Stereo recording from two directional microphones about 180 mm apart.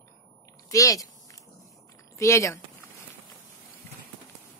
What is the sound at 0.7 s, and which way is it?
Speech, 20° left (ahead or behind).